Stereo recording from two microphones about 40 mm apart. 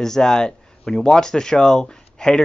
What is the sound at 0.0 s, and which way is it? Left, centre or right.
Speech, centre.